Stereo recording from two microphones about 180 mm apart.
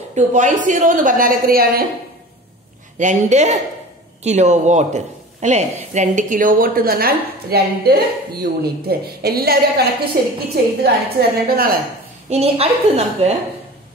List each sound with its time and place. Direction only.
0.1 s a woman's voice: 40° right (ahead or behind)
3.0 s a woman's voice: 40° right (ahead or behind)
12.3 s a woman's voice: 35° right (ahead or behind)